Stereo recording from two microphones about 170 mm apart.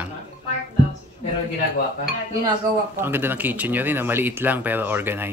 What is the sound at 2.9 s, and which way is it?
Speech, 15° right (ahead or behind).